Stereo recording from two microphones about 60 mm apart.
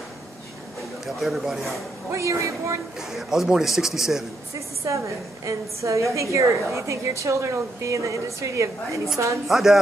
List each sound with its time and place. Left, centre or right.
1.0 s a man's voice: centre
2.0 s a woman's voice: right
3.1 s a man's voice: centre
4.6 s a woman's voice: right
9.5 s a man's voice: centre